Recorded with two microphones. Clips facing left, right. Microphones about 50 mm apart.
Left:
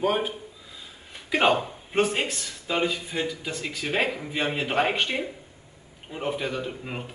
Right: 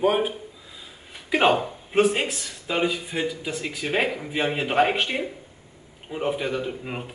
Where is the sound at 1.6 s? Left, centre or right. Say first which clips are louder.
Right 4 dB; centre.